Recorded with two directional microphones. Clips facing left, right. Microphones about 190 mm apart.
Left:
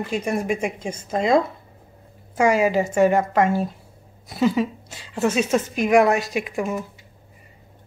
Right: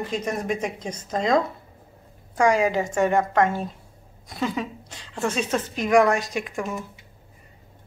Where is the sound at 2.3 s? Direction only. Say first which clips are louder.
Left 2 dB; 5° left (ahead or behind).